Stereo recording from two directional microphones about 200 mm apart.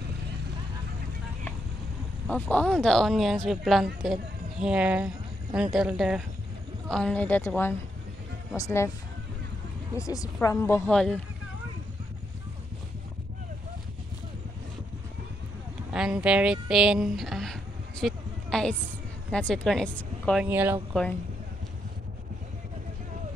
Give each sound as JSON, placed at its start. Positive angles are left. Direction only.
{"t": 2.2, "sound": "speech", "side_deg": 5}
{"t": 9.9, "sound": "speech", "side_deg": 15}
{"t": 15.9, "sound": "speech", "side_deg": -5}
{"t": 20.4, "sound": "speech", "side_deg": -10}